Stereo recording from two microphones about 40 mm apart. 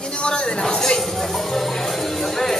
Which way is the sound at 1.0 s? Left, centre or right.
Centre.